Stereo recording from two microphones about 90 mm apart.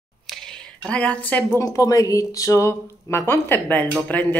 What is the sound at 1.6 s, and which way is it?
A woman's voice, 35° left (ahead or behind).